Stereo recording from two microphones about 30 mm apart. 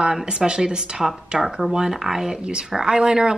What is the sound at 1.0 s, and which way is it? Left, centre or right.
Speech, centre.